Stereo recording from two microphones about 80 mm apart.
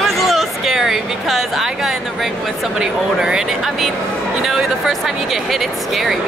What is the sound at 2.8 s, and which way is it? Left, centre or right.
Speech, centre.